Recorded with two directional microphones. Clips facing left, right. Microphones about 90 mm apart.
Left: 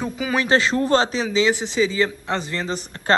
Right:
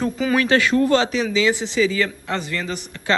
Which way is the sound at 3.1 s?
45° left (ahead or behind).